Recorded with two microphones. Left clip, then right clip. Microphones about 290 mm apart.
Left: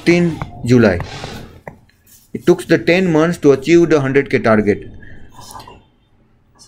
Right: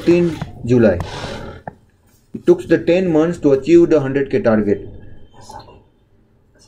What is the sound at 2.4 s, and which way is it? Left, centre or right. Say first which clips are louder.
Speech: left 1 dB; centre.